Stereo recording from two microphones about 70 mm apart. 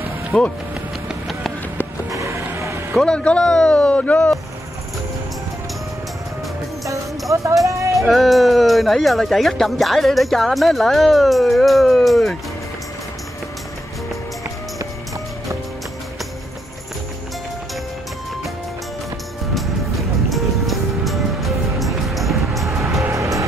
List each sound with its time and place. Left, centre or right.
0.3 s speech: left
2.1 s music: right
2.5 s vehicle: right
3.0 s speech: centre
6.9 s music: right
8.0 s speech: centre
20.2 s music: centre
22.7 s music: right